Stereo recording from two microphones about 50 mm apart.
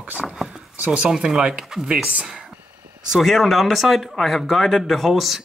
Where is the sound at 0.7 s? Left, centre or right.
Right.